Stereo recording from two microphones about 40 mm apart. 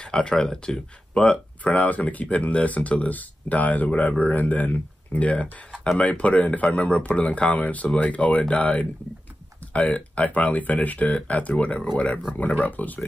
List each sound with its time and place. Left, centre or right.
0.0 s speech: centre
1.6 s speech: left
9.6 s typing: left
9.9 s speech: left
12.4 s speech: left